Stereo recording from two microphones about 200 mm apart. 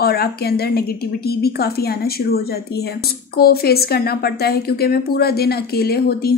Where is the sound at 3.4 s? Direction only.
50° left (ahead or behind).